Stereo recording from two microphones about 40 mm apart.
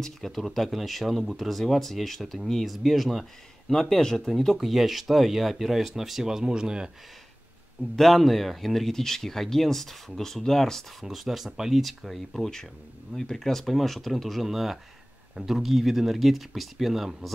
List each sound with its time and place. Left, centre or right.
0.0 s speech: centre
4.6 s speech: centre
7.9 s speech: centre
11.1 s speech: centre